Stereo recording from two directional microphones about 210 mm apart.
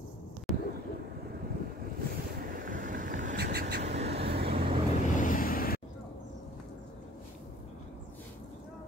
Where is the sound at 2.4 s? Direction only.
40° right (ahead or behind).